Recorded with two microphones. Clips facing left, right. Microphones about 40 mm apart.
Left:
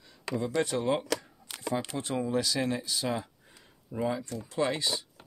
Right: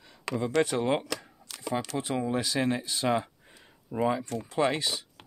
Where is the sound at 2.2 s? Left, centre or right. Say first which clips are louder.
Right 1 dB; right.